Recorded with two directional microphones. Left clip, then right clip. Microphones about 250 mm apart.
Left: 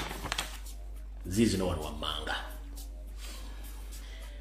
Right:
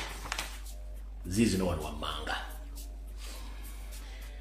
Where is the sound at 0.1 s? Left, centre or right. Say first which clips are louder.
Left 2 dB; left.